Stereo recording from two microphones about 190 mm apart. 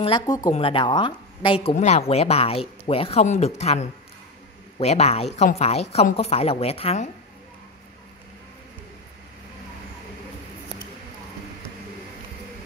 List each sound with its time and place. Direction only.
0.0 s a woman's voice: 25° left (ahead or behind)